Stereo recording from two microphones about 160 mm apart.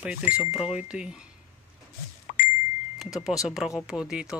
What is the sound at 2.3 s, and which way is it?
Ding, 55° left (ahead or behind).